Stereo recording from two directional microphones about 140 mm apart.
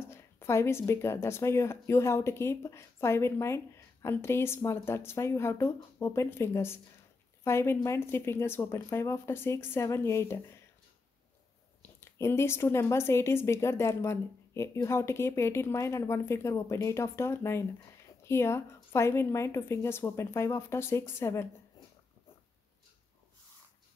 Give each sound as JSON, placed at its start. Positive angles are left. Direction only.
{"t": 0.0, "sound": "a woman's voice", "side_deg": 20}
{"t": 12.0, "sound": "a woman's voice", "side_deg": 20}